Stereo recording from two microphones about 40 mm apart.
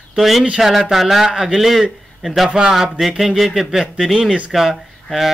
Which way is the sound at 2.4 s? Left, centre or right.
Right.